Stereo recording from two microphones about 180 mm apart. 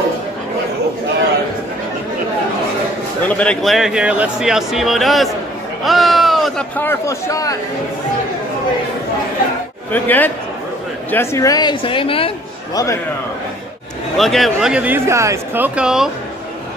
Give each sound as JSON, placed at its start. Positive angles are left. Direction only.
{"t": 3.3, "sound": "a man's voice", "side_deg": 5}
{"t": 5.9, "sound": "a sound", "side_deg": 0}
{"t": 6.8, "sound": "a man's voice", "side_deg": 15}
{"t": 9.9, "sound": "a man's voice", "side_deg": 10}
{"t": 12.7, "sound": "a man's voice", "side_deg": 15}
{"t": 14.1, "sound": "a man's voice", "side_deg": 0}